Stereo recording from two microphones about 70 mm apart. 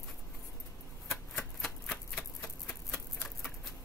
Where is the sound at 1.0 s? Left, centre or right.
Centre.